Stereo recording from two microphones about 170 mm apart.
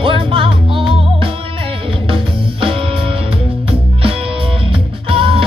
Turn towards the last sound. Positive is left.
turn(degrees=-30)  # may be behind; listen again after turning